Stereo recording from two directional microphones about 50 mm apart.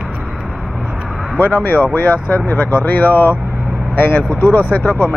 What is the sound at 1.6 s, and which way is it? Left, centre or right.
Speech, left.